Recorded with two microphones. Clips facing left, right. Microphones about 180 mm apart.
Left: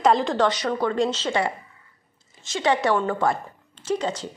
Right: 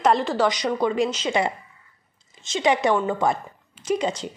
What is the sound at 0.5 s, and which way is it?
A woman's voice, 15° right (ahead or behind).